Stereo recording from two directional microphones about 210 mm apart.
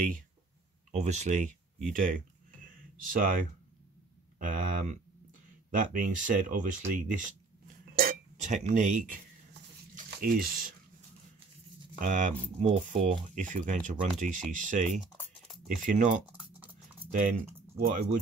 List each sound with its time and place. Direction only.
0.9 s speech: 35° right (ahead or behind)
10.2 s speech: 45° right (ahead or behind)
12.0 s speech: 35° right (ahead or behind)
15.1 s a sound: centre (ahead or behind)
15.8 s speech: 40° right (ahead or behind)
16.3 s typing: 5° right (ahead or behind)
17.1 s speech: 40° right (ahead or behind)